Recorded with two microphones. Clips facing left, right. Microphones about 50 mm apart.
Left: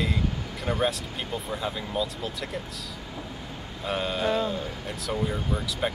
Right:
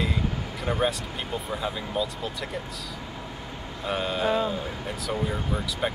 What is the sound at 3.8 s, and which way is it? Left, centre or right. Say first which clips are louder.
Speech: right 1 dB; centre.